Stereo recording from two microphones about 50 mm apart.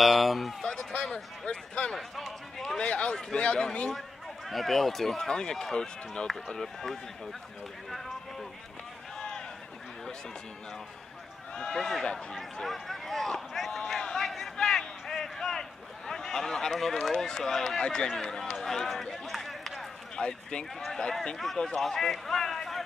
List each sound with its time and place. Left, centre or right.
0.0 s speech: centre
0.7 s speech: centre
2.0 s speech: centre
2.8 s speech: centre
4.5 s speech: centre
11.5 s speech: centre
13.7 s a sound: centre
16.1 s speech: centre
20.2 s a man's voice: centre